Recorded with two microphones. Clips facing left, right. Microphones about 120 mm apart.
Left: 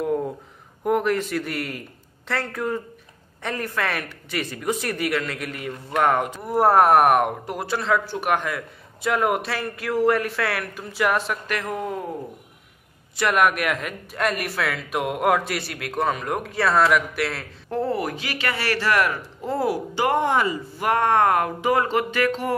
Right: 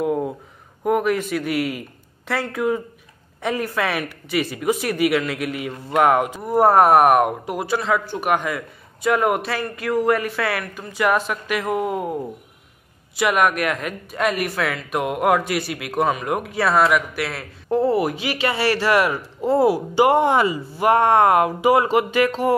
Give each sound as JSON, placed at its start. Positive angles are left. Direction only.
{"t": 0.0, "sound": "a sound", "side_deg": -5}
{"t": 0.8, "sound": "a man's voice", "side_deg": -5}
{"t": 13.1, "sound": "speech", "side_deg": -5}
{"t": 17.6, "sound": "a man's voice", "side_deg": -15}